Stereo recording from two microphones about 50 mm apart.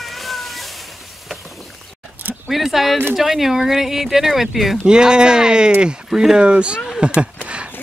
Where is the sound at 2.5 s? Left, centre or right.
Centre.